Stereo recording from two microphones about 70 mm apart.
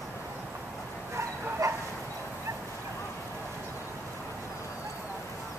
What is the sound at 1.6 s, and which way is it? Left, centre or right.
Bow-wow, right.